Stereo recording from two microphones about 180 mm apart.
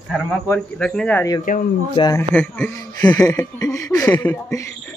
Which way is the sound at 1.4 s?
50° left (ahead or behind).